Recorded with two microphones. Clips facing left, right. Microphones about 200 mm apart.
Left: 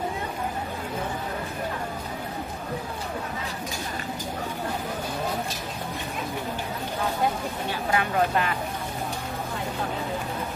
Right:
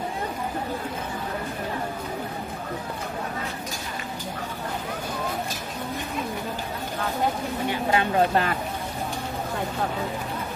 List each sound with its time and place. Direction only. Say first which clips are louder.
7.7 s speech: right 2 dB; 25° right (ahead or behind)